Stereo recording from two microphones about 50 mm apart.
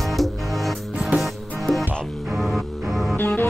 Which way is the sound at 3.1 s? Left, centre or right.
Left.